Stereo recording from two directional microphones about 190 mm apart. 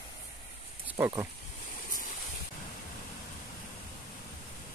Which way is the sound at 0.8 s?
15° right (ahead or behind).